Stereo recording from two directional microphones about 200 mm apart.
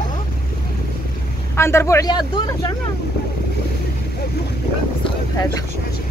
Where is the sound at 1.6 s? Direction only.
15° left (ahead or behind).